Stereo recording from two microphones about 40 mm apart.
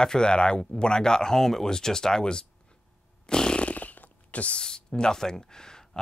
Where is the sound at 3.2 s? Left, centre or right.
Left.